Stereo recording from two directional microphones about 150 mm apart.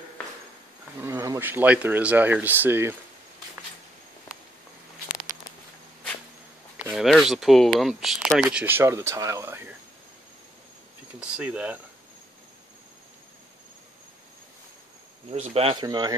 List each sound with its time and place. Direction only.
1.0 s speech: 20° right (ahead or behind)
6.9 s speech: centre (ahead or behind)
11.1 s speech: 10° right (ahead or behind)
15.3 s speech: 40° right (ahead or behind)
15.8 s speech: 25° right (ahead or behind)